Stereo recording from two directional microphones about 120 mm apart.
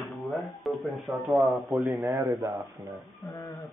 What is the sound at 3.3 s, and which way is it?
Speech, 35° left (ahead or behind).